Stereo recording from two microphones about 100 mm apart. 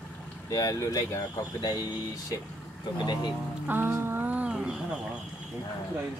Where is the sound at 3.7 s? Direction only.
25° right (ahead or behind).